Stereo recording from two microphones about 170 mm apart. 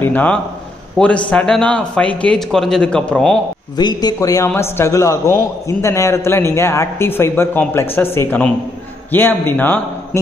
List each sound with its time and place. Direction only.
0.0 s a man's voice: 10° left (ahead or behind)
3.7 s a man's voice: 25° left (ahead or behind)